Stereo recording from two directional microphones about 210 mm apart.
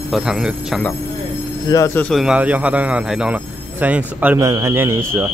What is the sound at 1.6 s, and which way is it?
A man's voice, 15° left (ahead or behind).